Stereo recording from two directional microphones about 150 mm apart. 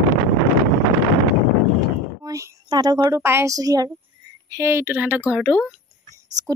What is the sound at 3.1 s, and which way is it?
Speech, 20° right (ahead or behind).